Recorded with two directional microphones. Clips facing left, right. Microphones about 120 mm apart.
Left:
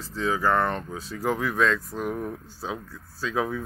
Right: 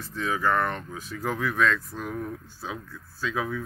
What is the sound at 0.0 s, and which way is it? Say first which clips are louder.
Speech: left 2 dB; 30° left (ahead or behind).